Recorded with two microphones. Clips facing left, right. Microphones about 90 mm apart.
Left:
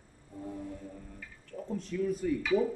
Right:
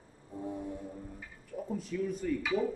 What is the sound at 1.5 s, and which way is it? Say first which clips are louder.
Speech: left 1 dB; 5° right (ahead or behind).